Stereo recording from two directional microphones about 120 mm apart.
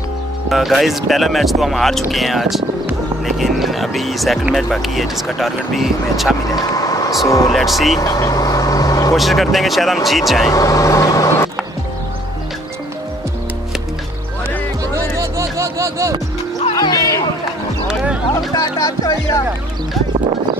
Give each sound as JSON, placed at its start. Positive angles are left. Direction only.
{"t": 0.5, "sound": "speech", "side_deg": 0}
{"t": 6.5, "sound": "vehicle", "side_deg": 30}
{"t": 7.2, "sound": "speech", "side_deg": 25}
{"t": 7.5, "sound": "speech", "side_deg": 0}
{"t": 8.0, "sound": "vehicle", "side_deg": 30}
{"t": 9.1, "sound": "speech", "side_deg": 0}
{"t": 10.5, "sound": "speech", "side_deg": 30}
{"t": 15.1, "sound": "music", "side_deg": -25}
{"t": 16.7, "sound": "music", "side_deg": 30}
{"t": 17.8, "sound": "horse", "side_deg": -10}
{"t": 18.5, "sound": "speech", "side_deg": 30}